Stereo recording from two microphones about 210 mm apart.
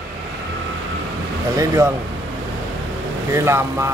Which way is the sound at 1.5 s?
15° right (ahead or behind).